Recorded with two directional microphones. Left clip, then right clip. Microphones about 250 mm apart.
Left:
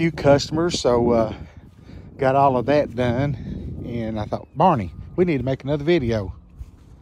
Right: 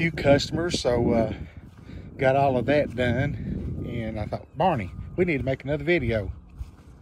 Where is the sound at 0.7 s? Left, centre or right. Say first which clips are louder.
Left 6 dB; centre.